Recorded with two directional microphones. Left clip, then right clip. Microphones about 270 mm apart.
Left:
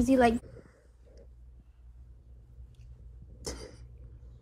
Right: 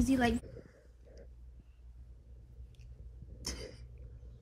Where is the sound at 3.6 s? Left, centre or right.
Centre.